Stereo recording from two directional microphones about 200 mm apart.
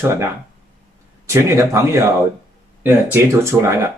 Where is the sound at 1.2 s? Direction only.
15° right (ahead or behind).